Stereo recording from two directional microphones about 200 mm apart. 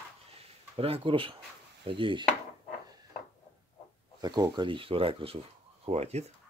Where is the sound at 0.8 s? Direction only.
25° right (ahead or behind).